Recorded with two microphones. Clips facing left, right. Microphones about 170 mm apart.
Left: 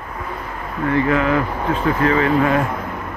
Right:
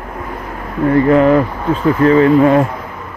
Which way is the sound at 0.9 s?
40° right (ahead or behind).